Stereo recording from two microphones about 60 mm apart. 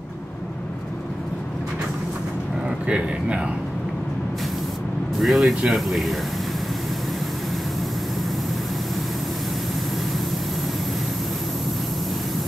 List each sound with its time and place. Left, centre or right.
2.9 s a man's voice: centre
5.2 s speech: centre